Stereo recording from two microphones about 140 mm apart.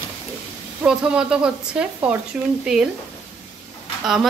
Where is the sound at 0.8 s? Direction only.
5° right (ahead or behind).